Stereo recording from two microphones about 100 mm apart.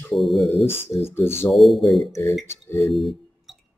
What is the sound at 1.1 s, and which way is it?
Speech, 25° left (ahead or behind).